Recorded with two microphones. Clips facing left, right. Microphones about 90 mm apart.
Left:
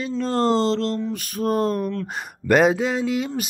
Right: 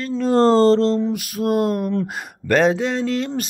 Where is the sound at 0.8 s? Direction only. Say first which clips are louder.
Right 6 dB; 25° right (ahead or behind).